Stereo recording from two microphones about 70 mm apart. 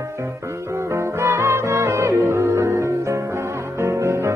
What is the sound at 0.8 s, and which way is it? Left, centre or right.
Music, right.